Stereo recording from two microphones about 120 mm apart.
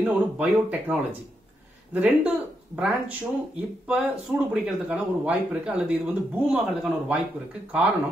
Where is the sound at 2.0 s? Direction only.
10° right (ahead or behind).